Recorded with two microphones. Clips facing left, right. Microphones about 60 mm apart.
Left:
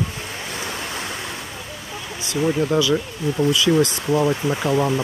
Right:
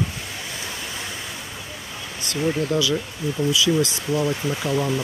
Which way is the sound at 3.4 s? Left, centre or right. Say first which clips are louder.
Left 3 dB; left.